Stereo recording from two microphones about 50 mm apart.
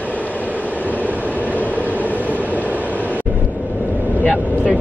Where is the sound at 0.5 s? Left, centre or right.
Right.